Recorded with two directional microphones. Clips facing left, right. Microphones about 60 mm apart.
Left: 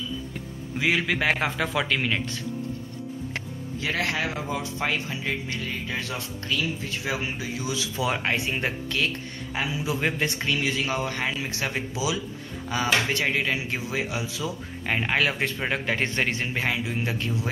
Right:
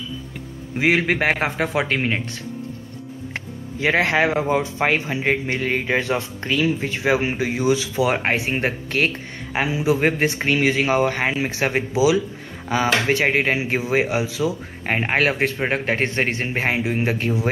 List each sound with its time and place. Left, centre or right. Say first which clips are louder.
0.7 s speech: right 6 dB; right
3.8 s speech: right 9 dB; right
5.6 s speech: right 10 dB; right
5.9 s speech: right 9 dB; right
9.9 s speech: right 7 dB; right
13.6 s speech: right 9 dB; right
14.9 s speech: right 5 dB; right